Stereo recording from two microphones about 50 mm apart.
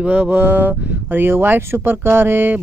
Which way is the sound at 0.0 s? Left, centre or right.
Right.